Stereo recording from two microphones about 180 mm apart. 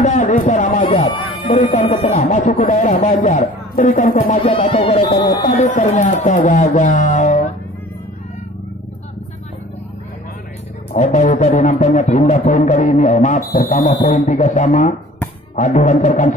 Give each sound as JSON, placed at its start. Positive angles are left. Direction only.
{"t": 0.0, "sound": "a sound", "side_deg": 45}
{"t": 1.5, "sound": "speech", "side_deg": 45}
{"t": 4.6, "sound": "a man's voice", "side_deg": 30}
{"t": 10.9, "sound": "a man's voice", "side_deg": 40}